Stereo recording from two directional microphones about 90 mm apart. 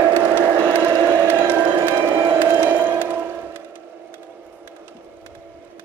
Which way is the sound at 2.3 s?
25° right (ahead or behind).